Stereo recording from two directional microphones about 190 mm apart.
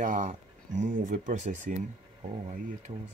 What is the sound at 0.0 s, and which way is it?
Speech, 45° right (ahead or behind).